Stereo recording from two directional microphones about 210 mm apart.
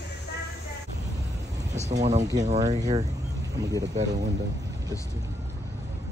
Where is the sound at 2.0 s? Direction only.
35° right (ahead or behind).